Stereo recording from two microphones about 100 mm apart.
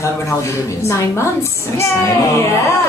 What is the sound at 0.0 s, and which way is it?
A woman's voice, 30° left (ahead or behind).